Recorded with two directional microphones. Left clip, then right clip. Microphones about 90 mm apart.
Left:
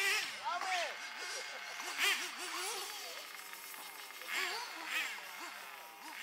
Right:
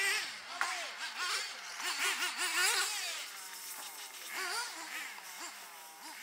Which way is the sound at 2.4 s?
25° right (ahead or behind).